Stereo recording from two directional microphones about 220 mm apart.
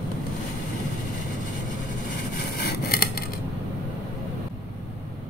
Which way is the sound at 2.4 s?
45° left (ahead or behind).